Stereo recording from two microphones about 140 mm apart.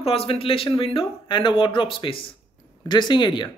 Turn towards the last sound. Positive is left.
turn(degrees=35)  # may be behind; listen again after turning